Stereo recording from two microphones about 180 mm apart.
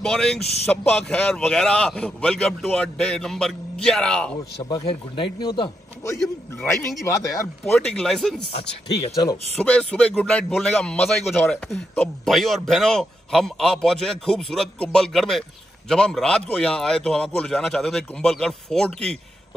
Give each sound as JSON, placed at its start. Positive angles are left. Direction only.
{"t": 0.0, "sound": "speech", "side_deg": 5}
{"t": 4.6, "sound": "a man's voice", "side_deg": 25}
{"t": 6.2, "sound": "speech", "side_deg": 10}
{"t": 8.5, "sound": "speech", "side_deg": 35}
{"t": 9.1, "sound": "a man's voice", "side_deg": 20}
{"t": 9.6, "sound": "speech", "side_deg": 5}